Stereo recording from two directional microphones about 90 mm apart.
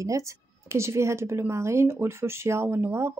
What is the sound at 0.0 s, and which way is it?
A woman's voice, 35° right (ahead or behind).